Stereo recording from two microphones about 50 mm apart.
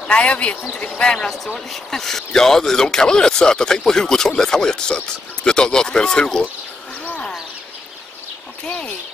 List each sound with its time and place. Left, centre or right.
0.1 s speech: left
1.3 s speech: centre
7.1 s a sound: left
8.6 s speech: left